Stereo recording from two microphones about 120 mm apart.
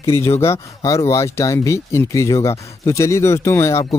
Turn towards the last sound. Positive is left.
turn(degrees=25)  # may be behind; listen again after turning